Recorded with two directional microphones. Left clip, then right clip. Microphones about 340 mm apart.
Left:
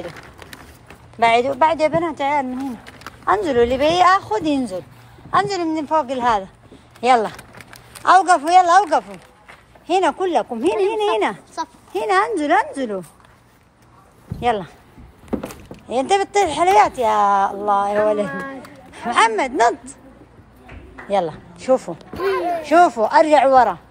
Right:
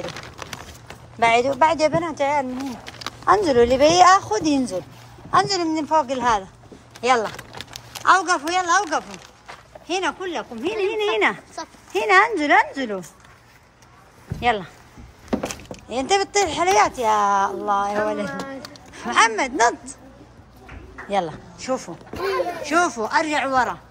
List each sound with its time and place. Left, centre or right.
1.2 s speech: centre
11.6 s a sound: left
11.9 s speech: centre
14.4 s speech: centre
15.2 s a sound: right
15.9 s speech: centre
21.1 s speech: centre